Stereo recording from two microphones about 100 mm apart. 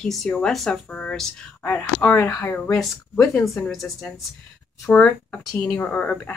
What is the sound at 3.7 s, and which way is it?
Speech, centre (ahead or behind).